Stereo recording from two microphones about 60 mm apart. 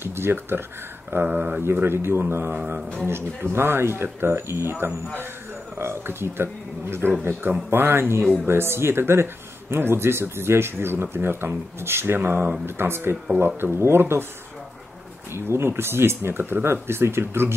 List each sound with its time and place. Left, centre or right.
0.0 s speech: right
1.2 s speech: right
1.6 s speech: right
15.3 s speech: right